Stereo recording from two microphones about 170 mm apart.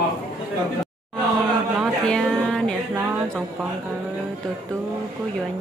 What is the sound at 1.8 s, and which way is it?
Music, 5° left (ahead or behind).